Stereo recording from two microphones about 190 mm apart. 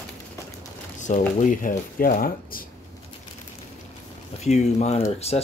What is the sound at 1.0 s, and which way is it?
Speech, 45° left (ahead or behind).